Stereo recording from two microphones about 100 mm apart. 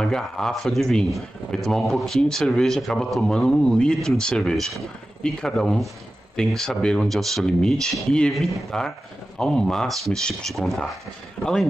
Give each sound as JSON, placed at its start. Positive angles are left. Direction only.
{"t": 0.0, "sound": "speech", "side_deg": 5}
{"t": 11.4, "sound": "speech", "side_deg": 15}